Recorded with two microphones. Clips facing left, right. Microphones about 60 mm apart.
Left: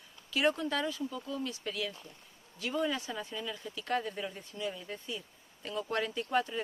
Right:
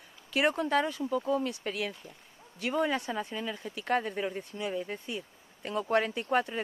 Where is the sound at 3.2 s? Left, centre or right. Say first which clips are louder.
Right 4 dB; right.